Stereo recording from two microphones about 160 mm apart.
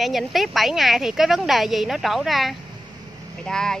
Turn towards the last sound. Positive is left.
turn(degrees=5)  # may be behind; listen again after turning